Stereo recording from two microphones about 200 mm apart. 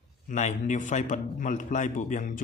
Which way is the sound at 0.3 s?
35° left (ahead or behind).